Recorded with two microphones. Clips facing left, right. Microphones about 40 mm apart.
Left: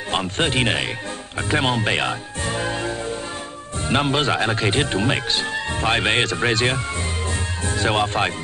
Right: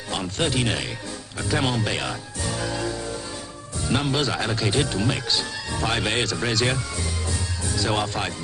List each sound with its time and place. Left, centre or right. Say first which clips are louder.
0.1 s speech: left 4 dB; left